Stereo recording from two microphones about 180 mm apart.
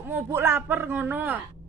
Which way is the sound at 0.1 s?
15° right (ahead or behind).